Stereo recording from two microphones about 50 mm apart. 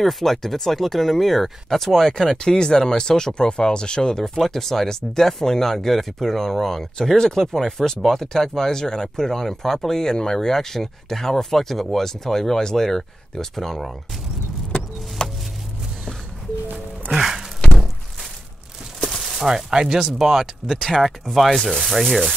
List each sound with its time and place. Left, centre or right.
0.0 s speech: centre
15.2 s music: centre
17.1 s music: centre
18.9 s a sound: centre
20.2 s speech: centre